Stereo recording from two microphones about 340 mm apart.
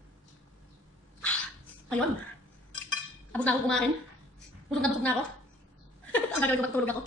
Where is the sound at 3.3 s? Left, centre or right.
Centre.